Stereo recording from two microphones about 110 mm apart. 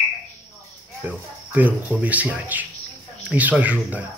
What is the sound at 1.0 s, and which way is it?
Speech, 15° right (ahead or behind).